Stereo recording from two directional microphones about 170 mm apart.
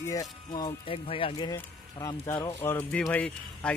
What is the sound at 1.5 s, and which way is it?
Speech, 20° left (ahead or behind).